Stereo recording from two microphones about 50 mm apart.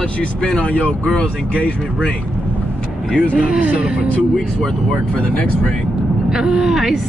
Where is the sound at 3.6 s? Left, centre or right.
Right.